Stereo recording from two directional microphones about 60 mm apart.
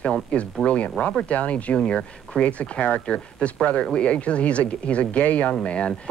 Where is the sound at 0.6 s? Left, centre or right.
Left.